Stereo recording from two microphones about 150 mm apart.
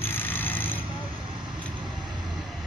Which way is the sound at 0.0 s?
15° left (ahead or behind).